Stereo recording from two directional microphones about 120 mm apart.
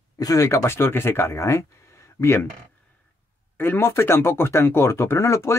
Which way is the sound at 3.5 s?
20° left (ahead or behind).